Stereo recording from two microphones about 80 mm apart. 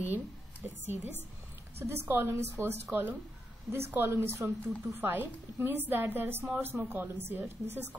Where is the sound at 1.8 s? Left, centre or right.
Right.